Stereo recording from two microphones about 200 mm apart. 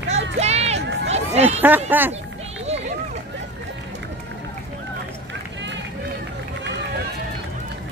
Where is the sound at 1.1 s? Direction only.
30° right (ahead or behind).